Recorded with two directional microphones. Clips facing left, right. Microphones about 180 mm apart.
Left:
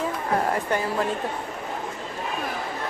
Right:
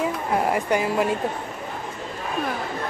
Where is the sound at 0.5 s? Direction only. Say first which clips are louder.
Right 3 dB; 15° right (ahead or behind).